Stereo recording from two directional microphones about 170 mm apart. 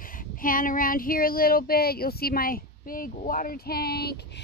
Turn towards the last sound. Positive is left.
turn(degrees=70)  # may be behind; listen again after turning